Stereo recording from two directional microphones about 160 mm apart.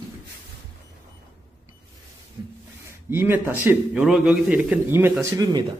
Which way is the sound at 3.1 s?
15° right (ahead or behind).